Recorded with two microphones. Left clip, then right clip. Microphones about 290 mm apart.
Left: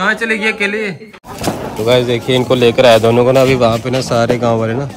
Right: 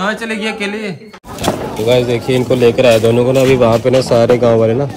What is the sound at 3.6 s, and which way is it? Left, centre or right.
Speech, centre.